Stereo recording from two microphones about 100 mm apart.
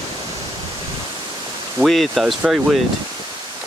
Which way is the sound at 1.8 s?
Centre (ahead or behind).